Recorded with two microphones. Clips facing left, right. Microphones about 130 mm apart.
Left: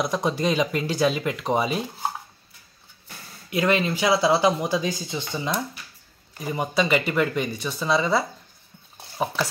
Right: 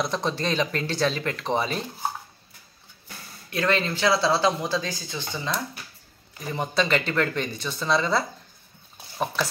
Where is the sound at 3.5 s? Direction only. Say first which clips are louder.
Left 3 dB; 15° left (ahead or behind).